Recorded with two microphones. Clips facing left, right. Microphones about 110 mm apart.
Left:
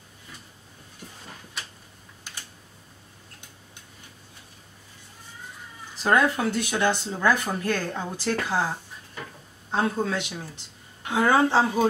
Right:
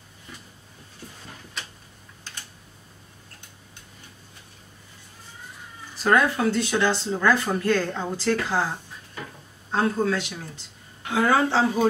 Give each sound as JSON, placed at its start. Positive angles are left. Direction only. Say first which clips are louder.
{"t": 6.0, "sound": "speech", "louder": "right 1 dB", "side_deg": 20}
{"t": 9.7, "sound": "speech", "louder": "right 2 dB", "side_deg": 20}